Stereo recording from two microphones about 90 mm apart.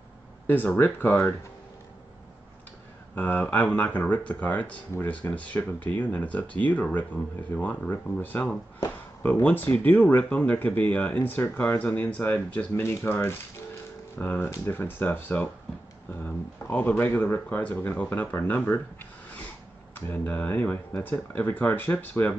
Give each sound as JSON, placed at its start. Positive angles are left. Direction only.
{"t": 0.5, "sound": "speech", "side_deg": 20}
{"t": 3.2, "sound": "speech", "side_deg": 20}
{"t": 19.9, "sound": "speech", "side_deg": 20}